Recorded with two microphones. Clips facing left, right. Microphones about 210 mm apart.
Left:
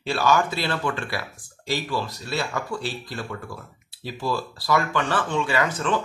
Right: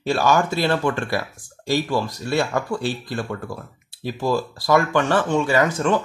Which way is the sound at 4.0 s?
45° right (ahead or behind).